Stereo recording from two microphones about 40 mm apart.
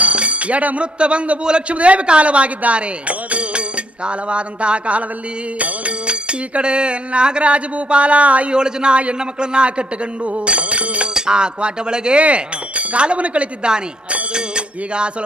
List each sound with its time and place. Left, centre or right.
0.0 s a sound: right
0.9 s music: right
1.4 s speech: right
5.6 s music: right
8.5 s music: right
12.2 s speech: right